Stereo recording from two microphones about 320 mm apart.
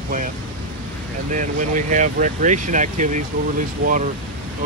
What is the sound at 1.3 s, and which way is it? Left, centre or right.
Speech, right.